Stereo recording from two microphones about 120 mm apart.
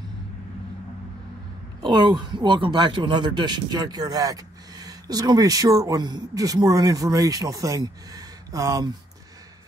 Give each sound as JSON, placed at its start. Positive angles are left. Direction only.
{"t": 1.8, "sound": "speech", "side_deg": -40}